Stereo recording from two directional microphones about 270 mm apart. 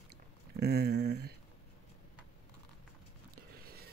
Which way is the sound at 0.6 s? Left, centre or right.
Right.